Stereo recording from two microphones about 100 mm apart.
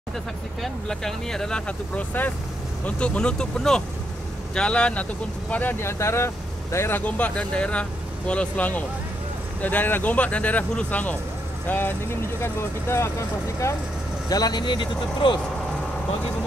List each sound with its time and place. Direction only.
0.6 s speech: 5° left (ahead or behind); by 13.1 s 25° left (ahead or behind)
14.3 s speech: 45° left (ahead or behind)